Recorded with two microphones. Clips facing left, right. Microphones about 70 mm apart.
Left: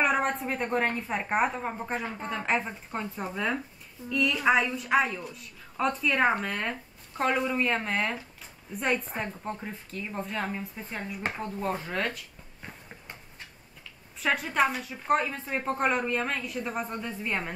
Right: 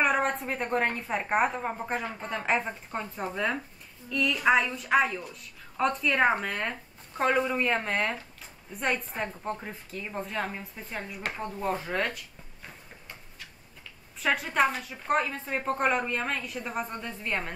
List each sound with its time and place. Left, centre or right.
0.0 s a woman's voice: centre
14.2 s a woman's voice: centre